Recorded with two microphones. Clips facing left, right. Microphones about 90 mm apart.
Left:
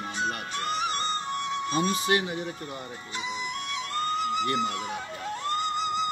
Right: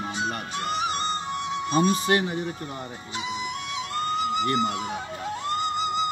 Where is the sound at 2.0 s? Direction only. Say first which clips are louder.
Right 3 dB; 45° right (ahead or behind).